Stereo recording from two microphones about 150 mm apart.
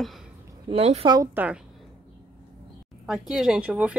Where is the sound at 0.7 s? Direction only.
45° right (ahead or behind).